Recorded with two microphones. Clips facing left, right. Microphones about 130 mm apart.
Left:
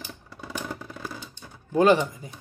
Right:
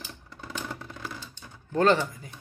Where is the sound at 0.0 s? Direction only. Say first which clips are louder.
Left 3 dB; 5° left (ahead or behind).